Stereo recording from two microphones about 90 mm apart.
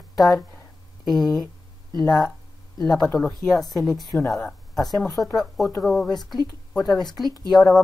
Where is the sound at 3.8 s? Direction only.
40° left (ahead or behind).